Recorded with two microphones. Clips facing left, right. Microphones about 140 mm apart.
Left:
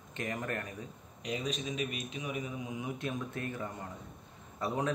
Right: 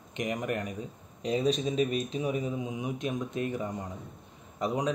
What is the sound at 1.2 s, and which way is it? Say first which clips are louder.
A man's voice: right 9 dB; 35° right (ahead or behind).